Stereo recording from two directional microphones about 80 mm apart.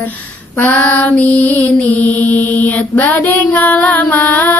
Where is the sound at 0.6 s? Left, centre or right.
Centre.